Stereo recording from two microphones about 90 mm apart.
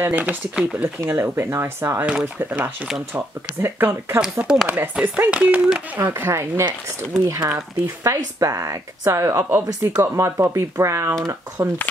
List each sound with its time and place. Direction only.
0.1 s speech: 15° right (ahead or behind)
4.2 s speech: 5° right (ahead or behind)
5.9 s speech: 25° right (ahead or behind); by 11.6 s 40° right (ahead or behind)